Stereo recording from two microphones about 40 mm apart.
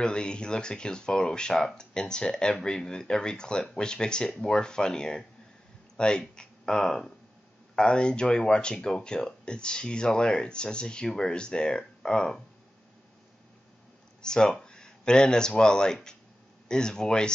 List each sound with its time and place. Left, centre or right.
0.0 s speech: left
14.2 s speech: centre